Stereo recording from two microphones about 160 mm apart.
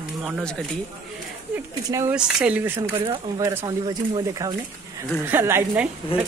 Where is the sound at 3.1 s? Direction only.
20° right (ahead or behind).